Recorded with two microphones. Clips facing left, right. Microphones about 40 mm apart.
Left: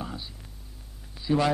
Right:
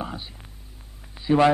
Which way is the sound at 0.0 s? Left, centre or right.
Right.